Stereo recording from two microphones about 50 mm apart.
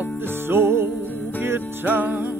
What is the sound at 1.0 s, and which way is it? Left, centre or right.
Music, left.